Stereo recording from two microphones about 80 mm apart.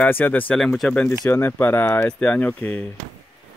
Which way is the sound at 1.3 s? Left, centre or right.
Left.